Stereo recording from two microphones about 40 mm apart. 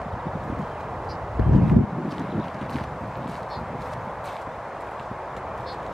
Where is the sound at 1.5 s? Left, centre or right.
Centre.